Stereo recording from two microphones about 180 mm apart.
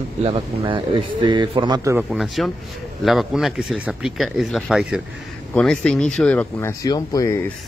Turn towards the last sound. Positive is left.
turn(degrees=15)  # may be behind; listen again after turning